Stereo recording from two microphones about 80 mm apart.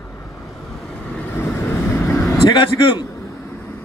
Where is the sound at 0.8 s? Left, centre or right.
Centre.